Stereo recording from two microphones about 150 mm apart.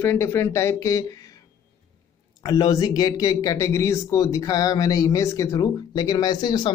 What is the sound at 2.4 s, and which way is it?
Speech, 25° left (ahead or behind).